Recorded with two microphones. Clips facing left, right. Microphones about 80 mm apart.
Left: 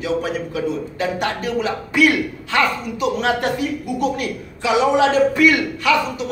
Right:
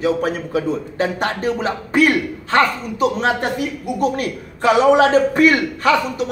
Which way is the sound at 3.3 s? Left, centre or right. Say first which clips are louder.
Even; right.